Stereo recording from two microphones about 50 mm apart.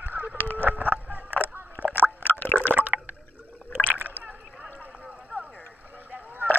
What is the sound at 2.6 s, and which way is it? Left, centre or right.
Water, right.